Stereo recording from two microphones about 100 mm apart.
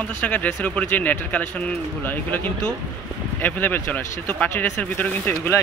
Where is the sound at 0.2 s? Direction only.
15° left (ahead or behind).